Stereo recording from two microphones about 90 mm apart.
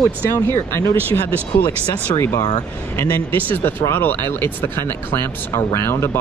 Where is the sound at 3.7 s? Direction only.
25° left (ahead or behind).